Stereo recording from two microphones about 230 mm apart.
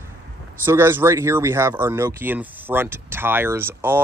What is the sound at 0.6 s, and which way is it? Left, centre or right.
Speech, centre.